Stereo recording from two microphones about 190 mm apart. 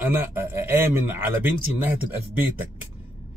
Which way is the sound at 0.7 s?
10° right (ahead or behind).